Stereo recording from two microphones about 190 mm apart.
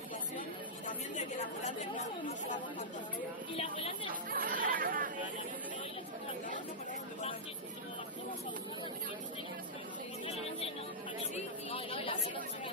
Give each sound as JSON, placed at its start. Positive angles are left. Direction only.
{"t": 0.8, "sound": "a woman's voice", "side_deg": 40}
{"t": 3.5, "sound": "speech", "side_deg": 30}
{"t": 4.3, "sound": "chatter", "side_deg": -50}
{"t": 10.2, "sound": "music", "side_deg": 35}
{"t": 11.7, "sound": "chatter", "side_deg": 30}